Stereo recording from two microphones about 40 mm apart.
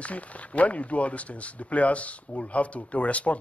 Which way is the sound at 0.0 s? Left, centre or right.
Left.